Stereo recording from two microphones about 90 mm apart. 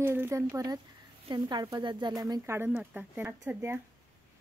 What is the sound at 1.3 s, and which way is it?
Speech, 55° right (ahead or behind).